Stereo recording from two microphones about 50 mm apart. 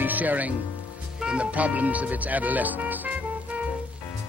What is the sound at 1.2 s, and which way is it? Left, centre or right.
Speech, right.